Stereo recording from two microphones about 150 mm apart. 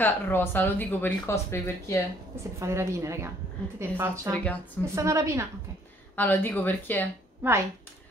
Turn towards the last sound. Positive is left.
turn(degrees=-15)  # may be behind; listen again after turning